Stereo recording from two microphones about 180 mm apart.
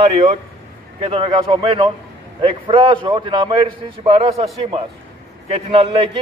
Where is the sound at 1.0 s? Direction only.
30° right (ahead or behind).